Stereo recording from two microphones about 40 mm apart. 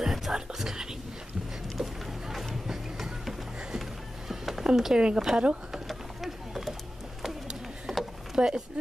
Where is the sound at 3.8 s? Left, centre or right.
Centre.